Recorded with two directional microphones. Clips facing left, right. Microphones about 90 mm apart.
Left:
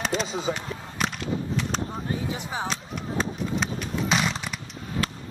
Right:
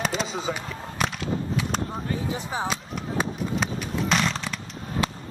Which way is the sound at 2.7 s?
Centre (ahead or behind).